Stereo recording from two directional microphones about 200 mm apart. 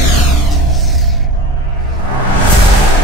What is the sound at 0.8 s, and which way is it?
Music, centre (ahead or behind).